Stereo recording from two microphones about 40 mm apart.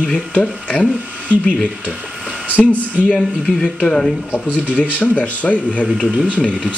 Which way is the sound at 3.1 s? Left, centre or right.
Left.